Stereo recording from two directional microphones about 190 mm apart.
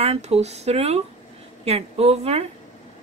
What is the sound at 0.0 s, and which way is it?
Speech, 35° right (ahead or behind).